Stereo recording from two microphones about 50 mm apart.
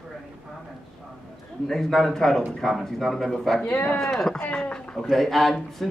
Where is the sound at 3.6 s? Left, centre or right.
Left.